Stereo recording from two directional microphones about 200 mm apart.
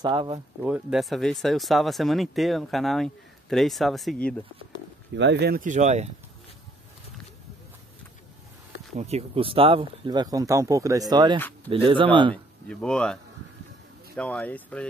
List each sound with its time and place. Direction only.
0.0 s speech: 25° right (ahead or behind)
0.7 s speech: 5° right (ahead or behind)
5.1 s speech: 60° right (ahead or behind); by 6.0 s 35° right (ahead or behind)
8.9 s speech: 30° right (ahead or behind)
12.6 s speech: 5° left (ahead or behind)